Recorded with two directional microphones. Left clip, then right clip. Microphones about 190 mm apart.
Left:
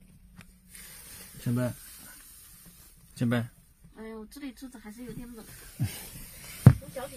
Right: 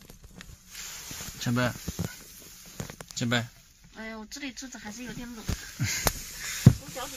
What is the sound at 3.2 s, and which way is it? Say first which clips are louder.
Speech: right 2 dB; 45° left (ahead or behind).